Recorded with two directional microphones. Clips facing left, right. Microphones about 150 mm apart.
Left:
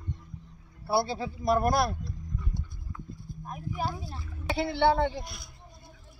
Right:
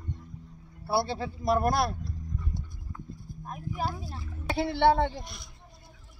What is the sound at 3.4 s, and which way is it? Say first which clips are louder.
Speech: even; centre (ahead or behind).